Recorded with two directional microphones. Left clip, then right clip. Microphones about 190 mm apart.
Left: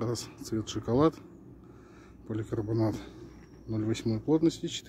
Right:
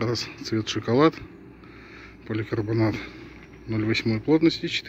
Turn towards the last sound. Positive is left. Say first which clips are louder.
# right 6 dB
turn(degrees=10)  # may be behind; listen again after turning